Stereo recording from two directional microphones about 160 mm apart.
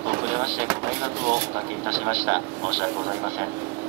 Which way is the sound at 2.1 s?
10° right (ahead or behind).